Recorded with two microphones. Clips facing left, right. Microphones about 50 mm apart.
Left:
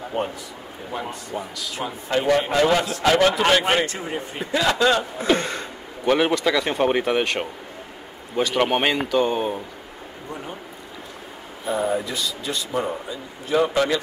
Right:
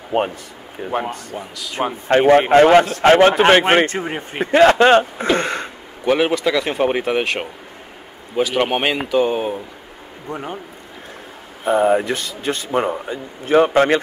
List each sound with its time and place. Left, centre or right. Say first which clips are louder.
0.1 s a man's voice: right 8 dB; right
1.3 s speech: even; right
1.8 s a man's voice: right 9 dB; right
5.4 s a sound: right 6 dB; right
6.0 s speech: right 2 dB; centre
8.4 s speech: right 2 dB; centre
10.3 s a man's voice: right 7 dB; right
11.6 s speech: right 8 dB; right